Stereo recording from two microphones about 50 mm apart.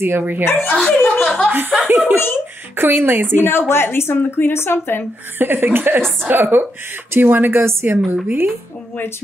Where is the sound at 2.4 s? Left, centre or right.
Right.